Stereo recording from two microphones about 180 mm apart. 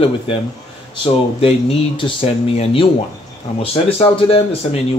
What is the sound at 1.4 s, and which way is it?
Speech, 30° left (ahead or behind).